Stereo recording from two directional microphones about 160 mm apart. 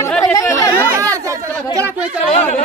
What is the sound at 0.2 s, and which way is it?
Chatter, 20° left (ahead or behind).